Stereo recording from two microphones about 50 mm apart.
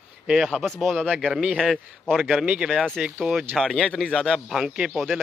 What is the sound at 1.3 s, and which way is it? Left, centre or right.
Speech, centre.